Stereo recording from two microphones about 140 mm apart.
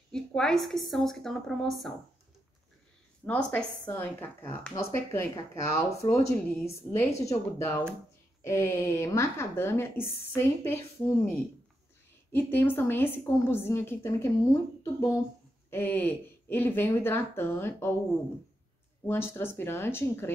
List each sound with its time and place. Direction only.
0.1 s a woman's voice: 5° left (ahead or behind)
3.3 s speech: 10° left (ahead or behind)
12.3 s speech: 15° left (ahead or behind)
19.0 s speech: 15° left (ahead or behind)